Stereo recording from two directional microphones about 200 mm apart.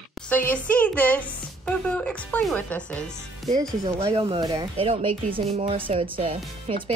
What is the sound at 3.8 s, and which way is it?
Speech, 30° right (ahead or behind).